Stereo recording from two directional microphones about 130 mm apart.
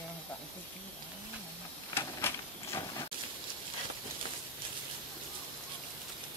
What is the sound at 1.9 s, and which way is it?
Printer, 20° left (ahead or behind).